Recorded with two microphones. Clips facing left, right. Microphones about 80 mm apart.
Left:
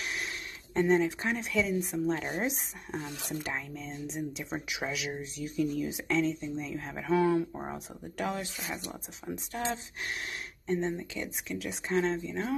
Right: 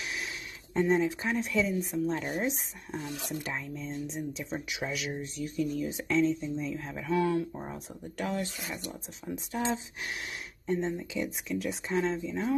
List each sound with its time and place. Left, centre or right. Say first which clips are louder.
0.7 s speech: even; centre
7.1 s speech: left 2 dB; left
7.7 s speech: even; centre
10.7 s speech: right 1 dB; centre